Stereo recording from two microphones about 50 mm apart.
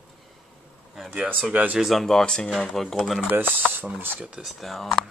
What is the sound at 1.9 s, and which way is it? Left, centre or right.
Speech, centre.